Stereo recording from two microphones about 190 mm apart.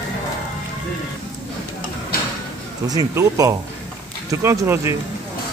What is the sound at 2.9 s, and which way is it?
Speech, 20° right (ahead or behind).